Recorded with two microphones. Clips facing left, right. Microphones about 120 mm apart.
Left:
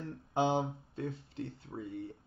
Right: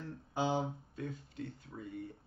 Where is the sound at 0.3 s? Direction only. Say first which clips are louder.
Left 4 dB; 25° left (ahead or behind).